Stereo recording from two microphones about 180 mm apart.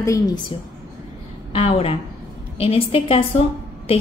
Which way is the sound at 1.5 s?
30° left (ahead or behind).